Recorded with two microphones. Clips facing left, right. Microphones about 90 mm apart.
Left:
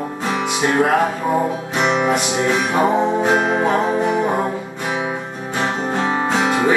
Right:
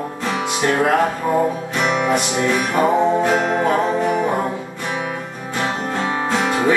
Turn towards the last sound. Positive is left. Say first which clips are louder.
# left 1 dB
turn(degrees=10)  # may be behind; listen again after turning